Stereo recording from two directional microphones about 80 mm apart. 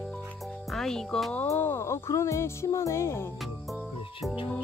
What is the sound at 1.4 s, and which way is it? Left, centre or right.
Speech, left.